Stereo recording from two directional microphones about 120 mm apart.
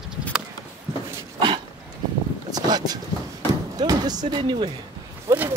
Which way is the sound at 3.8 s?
35° right (ahead or behind).